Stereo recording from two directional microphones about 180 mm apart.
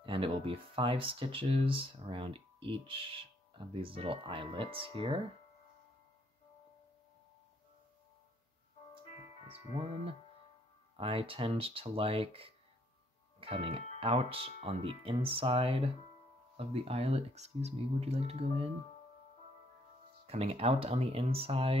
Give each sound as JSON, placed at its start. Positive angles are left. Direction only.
{"t": 0.0, "sound": "speech", "side_deg": -30}
{"t": 9.5, "sound": "speech", "side_deg": -30}
{"t": 20.2, "sound": "speech", "side_deg": -35}